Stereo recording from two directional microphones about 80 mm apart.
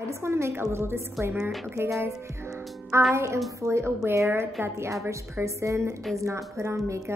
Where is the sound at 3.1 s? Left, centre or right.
Right.